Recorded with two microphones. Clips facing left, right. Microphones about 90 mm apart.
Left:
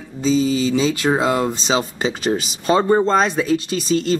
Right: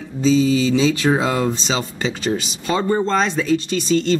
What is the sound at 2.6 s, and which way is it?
Speech, 35° left (ahead or behind).